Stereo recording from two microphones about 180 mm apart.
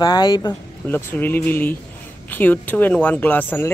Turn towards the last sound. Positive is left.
turn(degrees=10)  # may be behind; listen again after turning